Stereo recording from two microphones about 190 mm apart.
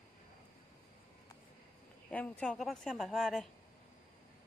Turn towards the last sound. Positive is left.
turn(degrees=0)  # may be behind; listen again after turning